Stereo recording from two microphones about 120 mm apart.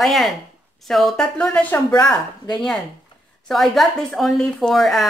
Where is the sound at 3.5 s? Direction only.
Centre (ahead or behind).